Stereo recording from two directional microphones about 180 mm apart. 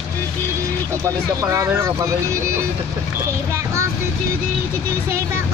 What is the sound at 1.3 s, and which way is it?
Speech, 15° right (ahead or behind).